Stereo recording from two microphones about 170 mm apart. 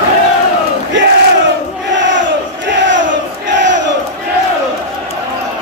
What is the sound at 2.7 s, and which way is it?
Crowd, 90° right.